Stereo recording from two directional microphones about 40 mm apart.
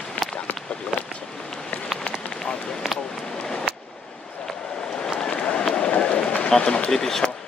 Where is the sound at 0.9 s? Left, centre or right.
Right.